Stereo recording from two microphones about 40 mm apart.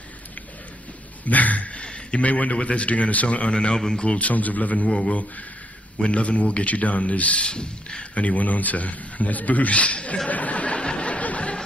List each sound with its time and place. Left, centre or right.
1.2 s a sound: left
2.0 s a man's voice: left
3.5 s a man's voice: centre
4.0 s a man's voice: left
4.8 s a man's voice: left
6.0 s a man's voice: left
7.4 s a sound: left
8.2 s a man's voice: left
10.2 s a sound: left